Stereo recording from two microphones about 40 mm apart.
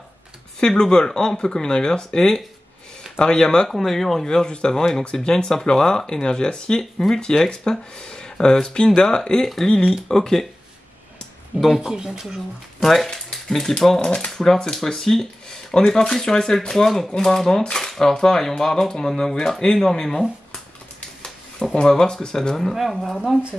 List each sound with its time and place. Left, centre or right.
0.6 s speech: centre
3.6 s speech: centre
7.2 s speech: left
11.8 s speech: centre
12.8 s speech: centre
15.4 s a sound: left
16.1 s speech: centre
21.7 s speech: centre
23.0 s speech: centre